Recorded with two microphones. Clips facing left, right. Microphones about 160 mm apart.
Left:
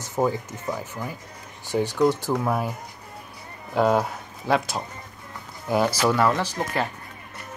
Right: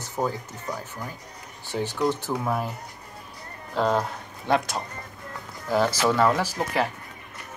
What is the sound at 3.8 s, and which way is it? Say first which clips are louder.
Speech: left 3 dB; 10° left (ahead or behind).